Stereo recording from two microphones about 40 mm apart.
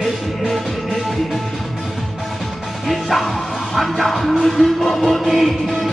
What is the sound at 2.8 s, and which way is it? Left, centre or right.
Music, centre.